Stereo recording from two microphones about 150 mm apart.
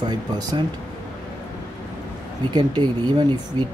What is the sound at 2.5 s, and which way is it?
Speech, 30° right (ahead or behind).